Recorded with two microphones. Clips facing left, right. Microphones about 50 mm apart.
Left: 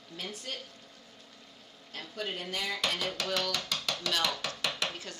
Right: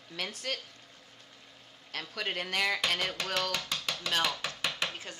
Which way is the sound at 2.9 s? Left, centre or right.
Right.